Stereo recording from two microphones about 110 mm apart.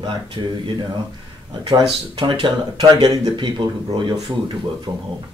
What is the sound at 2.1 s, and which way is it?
A man's voice, 50° right (ahead or behind).